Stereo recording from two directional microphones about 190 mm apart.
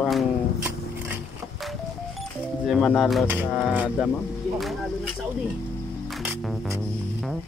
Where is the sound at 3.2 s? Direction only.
10° right (ahead or behind).